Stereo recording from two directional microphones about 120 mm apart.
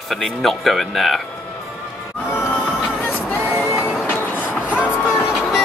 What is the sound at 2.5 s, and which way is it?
Music, 15° left (ahead or behind).